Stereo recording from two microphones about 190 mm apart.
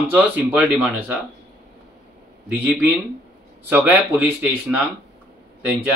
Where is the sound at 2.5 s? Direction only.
10° right (ahead or behind).